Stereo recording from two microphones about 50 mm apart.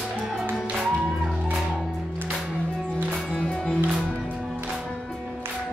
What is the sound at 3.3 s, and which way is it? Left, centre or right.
Music, centre.